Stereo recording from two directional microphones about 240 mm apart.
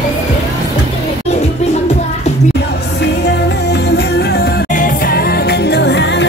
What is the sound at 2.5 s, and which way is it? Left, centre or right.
Music, left.